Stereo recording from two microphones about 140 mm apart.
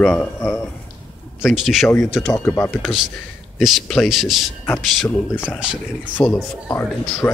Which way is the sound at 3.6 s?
Centre (ahead or behind).